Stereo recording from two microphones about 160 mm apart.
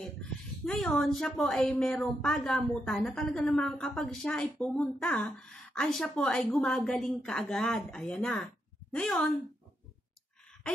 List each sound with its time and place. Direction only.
0.7 s a woman's voice: 5° left (ahead or behind)